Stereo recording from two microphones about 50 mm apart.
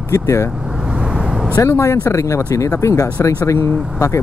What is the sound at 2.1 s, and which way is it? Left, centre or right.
Speech, left.